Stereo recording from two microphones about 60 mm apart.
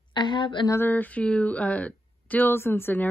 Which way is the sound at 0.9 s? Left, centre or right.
Left.